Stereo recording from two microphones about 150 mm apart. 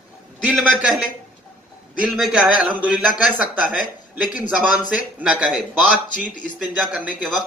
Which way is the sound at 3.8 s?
60° left (ahead or behind).